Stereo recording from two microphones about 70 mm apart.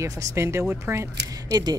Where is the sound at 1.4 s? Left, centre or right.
Right.